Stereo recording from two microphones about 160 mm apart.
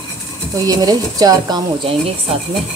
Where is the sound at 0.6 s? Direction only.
25° right (ahead or behind).